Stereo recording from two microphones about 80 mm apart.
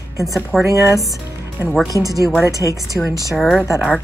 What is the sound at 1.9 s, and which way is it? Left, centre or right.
Speech, right.